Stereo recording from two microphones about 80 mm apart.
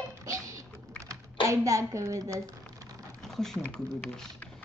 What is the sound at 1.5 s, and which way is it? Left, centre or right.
Speech, right.